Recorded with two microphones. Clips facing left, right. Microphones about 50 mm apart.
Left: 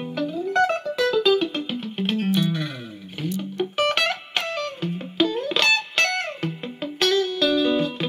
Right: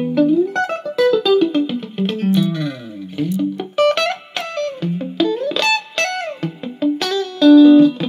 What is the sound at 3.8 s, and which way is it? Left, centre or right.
Music, centre.